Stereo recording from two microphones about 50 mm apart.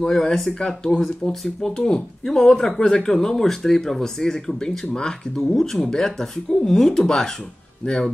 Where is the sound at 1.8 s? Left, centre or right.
Centre.